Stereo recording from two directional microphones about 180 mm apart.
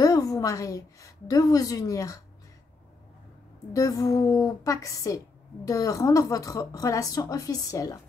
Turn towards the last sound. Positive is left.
turn(degrees=20)  # may be behind; listen again after turning